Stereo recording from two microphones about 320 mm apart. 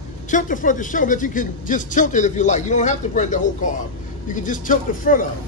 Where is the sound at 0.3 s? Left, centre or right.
Left.